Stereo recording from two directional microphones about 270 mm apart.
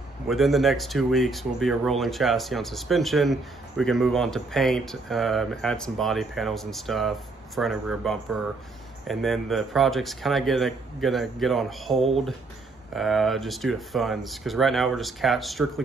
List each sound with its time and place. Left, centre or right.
0.3 s speech: centre